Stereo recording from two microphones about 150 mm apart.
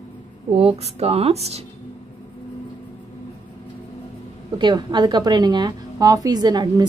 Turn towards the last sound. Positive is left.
turn(degrees=-30)  # may be behind; listen again after turning